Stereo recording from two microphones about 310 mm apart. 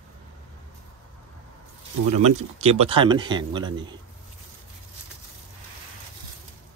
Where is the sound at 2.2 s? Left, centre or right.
Right.